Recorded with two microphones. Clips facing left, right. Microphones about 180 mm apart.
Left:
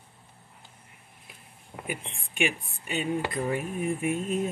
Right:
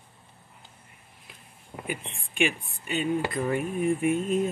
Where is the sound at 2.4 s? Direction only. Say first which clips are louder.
Right 2 dB; 40° right (ahead or behind).